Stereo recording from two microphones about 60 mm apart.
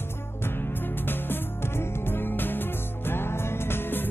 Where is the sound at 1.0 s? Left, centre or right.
Left.